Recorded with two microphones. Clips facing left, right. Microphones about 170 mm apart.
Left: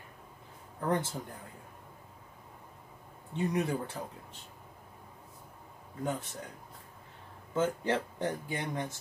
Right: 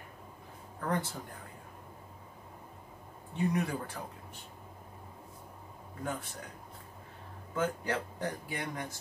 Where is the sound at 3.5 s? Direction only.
20° left (ahead or behind).